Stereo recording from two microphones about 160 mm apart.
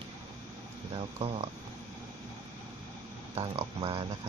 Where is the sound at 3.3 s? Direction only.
35° right (ahead or behind).